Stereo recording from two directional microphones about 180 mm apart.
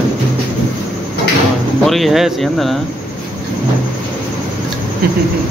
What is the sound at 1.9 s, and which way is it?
Speech, centre (ahead or behind).